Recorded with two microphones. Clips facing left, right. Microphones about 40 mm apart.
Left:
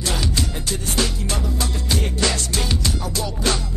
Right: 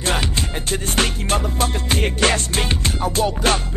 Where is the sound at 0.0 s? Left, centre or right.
Right.